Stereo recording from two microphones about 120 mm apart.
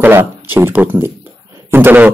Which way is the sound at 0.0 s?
15° right (ahead or behind).